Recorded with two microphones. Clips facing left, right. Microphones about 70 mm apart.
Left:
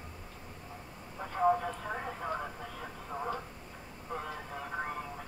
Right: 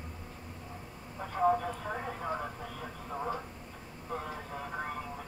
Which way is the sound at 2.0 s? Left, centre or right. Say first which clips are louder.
Right 1 dB; centre.